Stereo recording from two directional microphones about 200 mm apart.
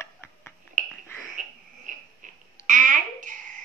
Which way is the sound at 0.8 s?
40° right (ahead or behind).